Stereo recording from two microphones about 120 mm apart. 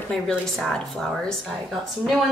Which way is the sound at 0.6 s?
5° left (ahead or behind).